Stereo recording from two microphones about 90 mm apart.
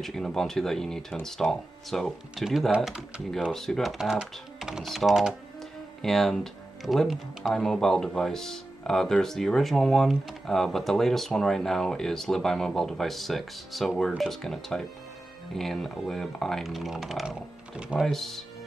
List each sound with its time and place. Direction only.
0.0 s speech: 5° left (ahead or behind)
17.7 s speech: 10° right (ahead or behind)
18.0 s speech: 5° left (ahead or behind)